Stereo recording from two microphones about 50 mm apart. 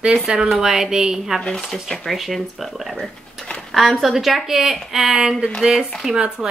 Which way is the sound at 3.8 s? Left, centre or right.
Centre.